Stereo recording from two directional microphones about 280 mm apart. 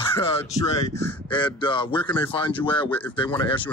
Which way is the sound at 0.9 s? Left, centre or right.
Centre.